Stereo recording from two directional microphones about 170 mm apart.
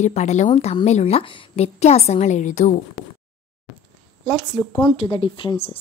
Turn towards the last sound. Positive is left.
turn(degrees=35)  # may be behind; listen again after turning